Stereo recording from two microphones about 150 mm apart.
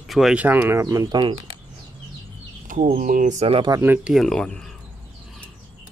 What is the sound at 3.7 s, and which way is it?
Speech, 15° right (ahead or behind).